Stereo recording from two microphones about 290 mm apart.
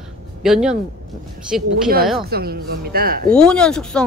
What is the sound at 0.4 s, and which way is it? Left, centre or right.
Speech, centre.